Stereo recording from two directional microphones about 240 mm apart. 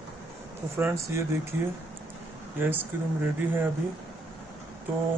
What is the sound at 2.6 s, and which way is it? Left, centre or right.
Speech, centre.